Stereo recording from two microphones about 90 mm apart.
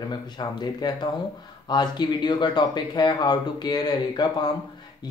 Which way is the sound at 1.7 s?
55° left (ahead or behind).